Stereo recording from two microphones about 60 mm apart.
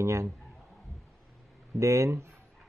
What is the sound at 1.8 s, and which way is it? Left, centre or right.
Speech, right.